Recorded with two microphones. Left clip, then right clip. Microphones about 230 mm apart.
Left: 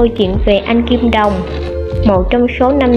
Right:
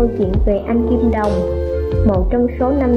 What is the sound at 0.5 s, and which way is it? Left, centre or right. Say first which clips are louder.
A woman's voice: left 6 dB; left.